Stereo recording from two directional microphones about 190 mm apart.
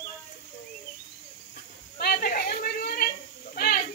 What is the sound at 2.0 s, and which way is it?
A woman's voice, 50° left (ahead or behind).